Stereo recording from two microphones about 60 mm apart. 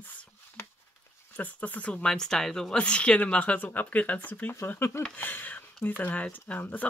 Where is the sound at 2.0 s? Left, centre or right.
Centre; by 4.6 s left.